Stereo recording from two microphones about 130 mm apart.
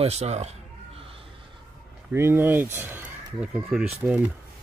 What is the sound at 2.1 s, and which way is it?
Speech, 15° right (ahead or behind).